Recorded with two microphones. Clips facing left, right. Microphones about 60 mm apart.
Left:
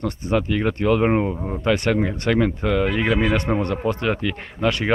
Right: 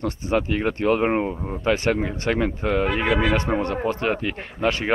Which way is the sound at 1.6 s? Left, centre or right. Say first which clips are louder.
Left 1 dB; right.